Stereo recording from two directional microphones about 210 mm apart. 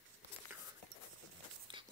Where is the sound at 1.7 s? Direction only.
20° right (ahead or behind).